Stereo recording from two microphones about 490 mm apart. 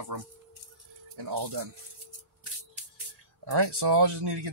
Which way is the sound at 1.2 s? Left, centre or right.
Right.